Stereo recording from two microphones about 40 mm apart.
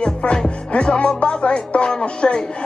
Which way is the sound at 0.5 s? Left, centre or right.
Left.